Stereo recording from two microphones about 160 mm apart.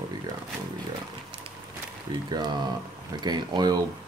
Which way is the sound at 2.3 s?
25° right (ahead or behind).